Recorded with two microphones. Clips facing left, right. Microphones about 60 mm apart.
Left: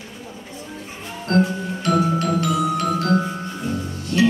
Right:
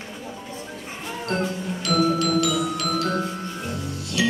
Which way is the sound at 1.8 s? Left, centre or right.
Left.